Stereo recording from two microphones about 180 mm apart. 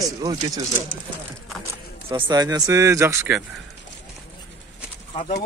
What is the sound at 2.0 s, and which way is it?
Speech, 30° right (ahead or behind).